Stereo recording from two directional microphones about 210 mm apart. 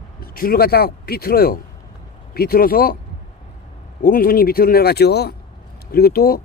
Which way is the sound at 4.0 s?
45° left (ahead or behind).